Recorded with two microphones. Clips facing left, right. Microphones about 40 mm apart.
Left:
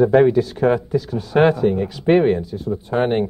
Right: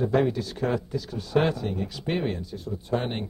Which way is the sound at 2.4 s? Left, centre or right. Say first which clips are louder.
Left 8 dB; centre.